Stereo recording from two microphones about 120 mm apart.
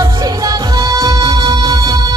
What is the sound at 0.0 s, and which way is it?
Music, 35° right (ahead or behind).